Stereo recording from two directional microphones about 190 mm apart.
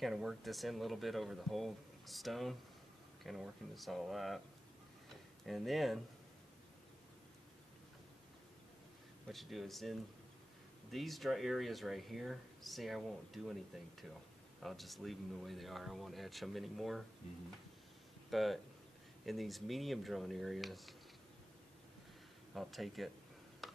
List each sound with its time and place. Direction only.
0.0 s speech: centre (ahead or behind)
5.4 s speech: centre (ahead or behind)
9.3 s speech: centre (ahead or behind)
14.6 s speech: centre (ahead or behind)
18.3 s speech: centre (ahead or behind)
22.5 s speech: centre (ahead or behind)
23.6 s tick-tock: centre (ahead or behind)